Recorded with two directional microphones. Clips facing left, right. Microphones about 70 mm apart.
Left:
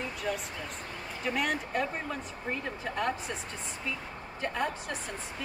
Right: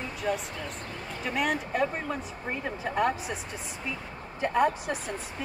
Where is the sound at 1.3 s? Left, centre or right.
Centre.